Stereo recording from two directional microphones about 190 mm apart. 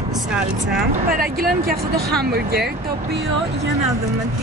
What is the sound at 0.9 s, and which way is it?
Speech, 50° right (ahead or behind).